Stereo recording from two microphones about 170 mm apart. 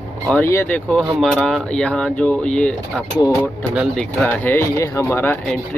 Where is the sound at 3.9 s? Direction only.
10° left (ahead or behind).